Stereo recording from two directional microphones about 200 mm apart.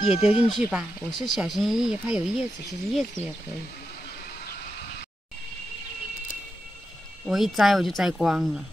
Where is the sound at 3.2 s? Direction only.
35° left (ahead or behind).